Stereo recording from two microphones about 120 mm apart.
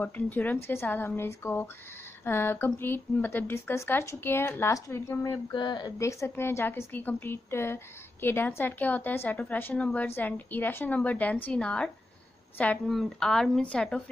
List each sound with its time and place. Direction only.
0.0 s a woman's voice: 15° left (ahead or behind)
5.5 s speech: 40° left (ahead or behind)
5.9 s a woman's voice: 25° left (ahead or behind); by 14.0 s 10° left (ahead or behind)